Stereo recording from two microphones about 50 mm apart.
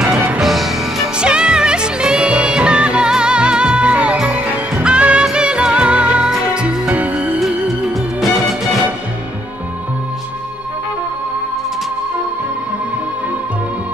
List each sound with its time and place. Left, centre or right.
0.4 s music: centre
1.1 s music: centre
7.6 s music: centre